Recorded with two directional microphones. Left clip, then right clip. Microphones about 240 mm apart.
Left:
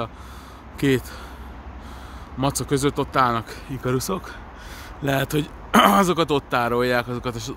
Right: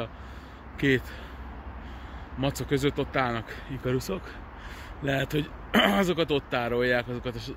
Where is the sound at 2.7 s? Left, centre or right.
Left.